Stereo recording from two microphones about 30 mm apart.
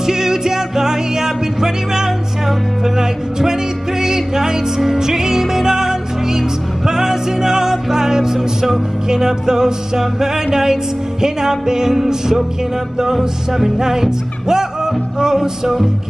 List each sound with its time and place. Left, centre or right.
0.0 s music: centre